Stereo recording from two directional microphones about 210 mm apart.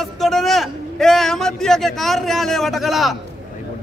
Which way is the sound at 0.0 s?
Centre (ahead or behind).